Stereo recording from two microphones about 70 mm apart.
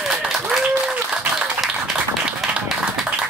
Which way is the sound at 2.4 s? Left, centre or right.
Centre.